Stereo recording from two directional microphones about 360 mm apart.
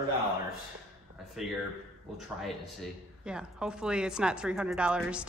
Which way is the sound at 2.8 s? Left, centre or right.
Centre.